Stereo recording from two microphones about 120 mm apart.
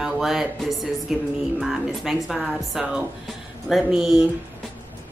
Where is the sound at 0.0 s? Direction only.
5° right (ahead or behind).